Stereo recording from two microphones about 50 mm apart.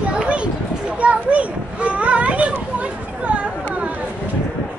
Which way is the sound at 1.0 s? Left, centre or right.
Right.